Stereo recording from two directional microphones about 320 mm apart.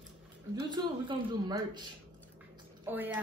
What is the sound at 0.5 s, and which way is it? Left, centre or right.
A woman's voice, centre.